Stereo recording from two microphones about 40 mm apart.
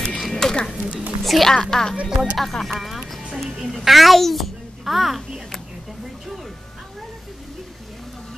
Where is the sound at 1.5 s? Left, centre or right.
Centre.